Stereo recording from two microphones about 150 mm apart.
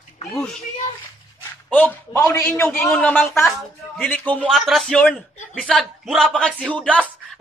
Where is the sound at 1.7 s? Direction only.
10° left (ahead or behind).